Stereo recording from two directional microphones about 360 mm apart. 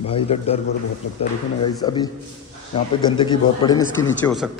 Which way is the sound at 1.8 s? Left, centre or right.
Centre.